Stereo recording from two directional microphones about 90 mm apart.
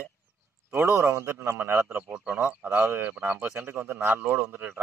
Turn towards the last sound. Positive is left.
turn(degrees=-25)  # may be behind; listen again after turning